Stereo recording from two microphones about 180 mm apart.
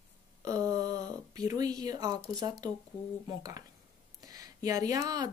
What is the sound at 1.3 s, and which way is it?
Speech, 20° right (ahead or behind).